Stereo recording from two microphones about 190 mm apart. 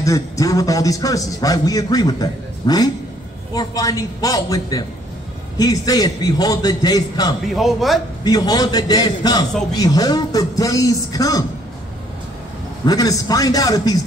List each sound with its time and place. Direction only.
0.0 s a man's voice: 15° left (ahead or behind)
7.5 s a man's voice: centre (ahead or behind)
8.2 s a man's voice: 20° left (ahead or behind)
12.8 s a man's voice: 20° left (ahead or behind)